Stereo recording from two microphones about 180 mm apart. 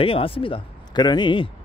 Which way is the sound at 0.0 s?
30° left (ahead or behind).